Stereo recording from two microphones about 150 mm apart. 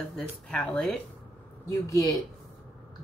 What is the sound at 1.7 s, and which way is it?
Speech, 20° left (ahead or behind).